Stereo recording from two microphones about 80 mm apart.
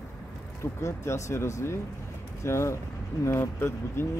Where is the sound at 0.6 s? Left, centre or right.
Left.